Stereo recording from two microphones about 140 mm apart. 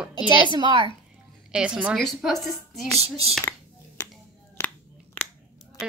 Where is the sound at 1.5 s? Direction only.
5° right (ahead or behind).